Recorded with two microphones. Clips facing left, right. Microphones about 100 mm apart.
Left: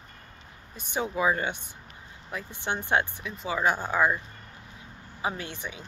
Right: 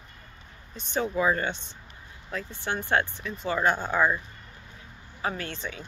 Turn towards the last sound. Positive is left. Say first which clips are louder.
# right 2 dB
turn(degrees=15)  # may be behind; listen again after turning